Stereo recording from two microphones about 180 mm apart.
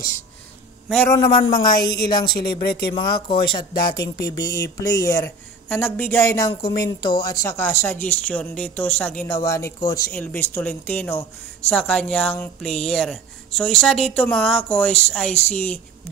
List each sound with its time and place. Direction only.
1.1 s speech: 25° left (ahead or behind)
1.8 s speech: 60° left (ahead or behind)
2.9 s speech: 25° left (ahead or behind); by 15.8 s 10° left (ahead or behind)